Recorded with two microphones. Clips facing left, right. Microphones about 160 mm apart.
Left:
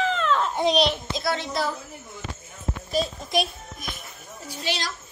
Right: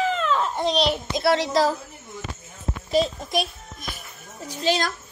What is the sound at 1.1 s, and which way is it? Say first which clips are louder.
Speech: right 11 dB; 70° right (ahead or behind).